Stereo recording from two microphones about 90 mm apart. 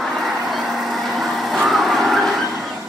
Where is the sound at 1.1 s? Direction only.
Centre (ahead or behind).